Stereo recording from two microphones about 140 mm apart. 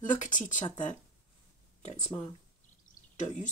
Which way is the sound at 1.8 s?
55° left (ahead or behind).